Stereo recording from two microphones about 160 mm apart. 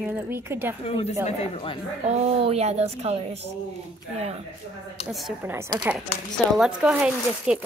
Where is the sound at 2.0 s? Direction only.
45° right (ahead or behind).